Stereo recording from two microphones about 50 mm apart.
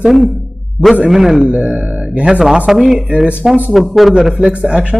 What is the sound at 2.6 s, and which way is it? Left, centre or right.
Speech, centre.